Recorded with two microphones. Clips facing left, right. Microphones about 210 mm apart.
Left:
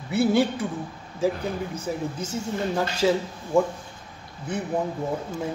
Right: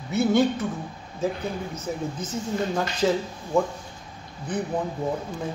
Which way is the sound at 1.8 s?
30° left (ahead or behind).